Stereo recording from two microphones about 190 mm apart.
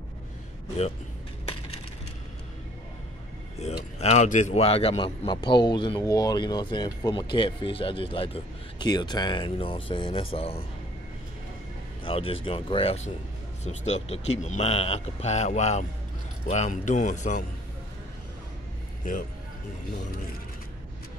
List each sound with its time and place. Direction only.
4.0 s a man's voice: 35° left (ahead or behind)
12.0 s a man's voice: 30° left (ahead or behind)